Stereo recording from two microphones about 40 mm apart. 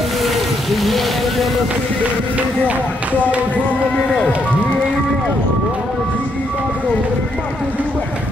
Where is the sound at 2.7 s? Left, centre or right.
Right.